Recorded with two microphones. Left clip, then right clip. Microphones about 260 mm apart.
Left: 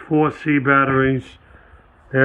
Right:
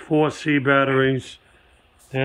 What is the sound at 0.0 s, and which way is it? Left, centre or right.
Speech, centre.